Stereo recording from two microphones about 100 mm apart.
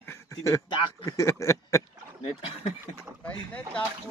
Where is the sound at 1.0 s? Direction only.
30° left (ahead or behind).